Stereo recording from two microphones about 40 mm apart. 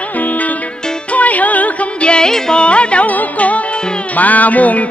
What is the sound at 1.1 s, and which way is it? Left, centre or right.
Music, left.